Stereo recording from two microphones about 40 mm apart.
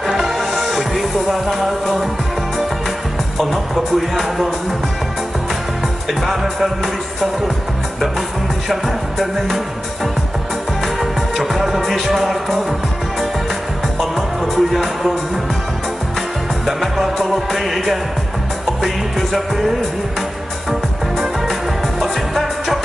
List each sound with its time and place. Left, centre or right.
0.0 s music: centre
3.3 s music: centre
6.2 s music: centre
8.6 s music: centre
11.0 s music: centre
13.9 s music: centre
16.6 s music: centre
19.3 s music: centre
22.0 s music: centre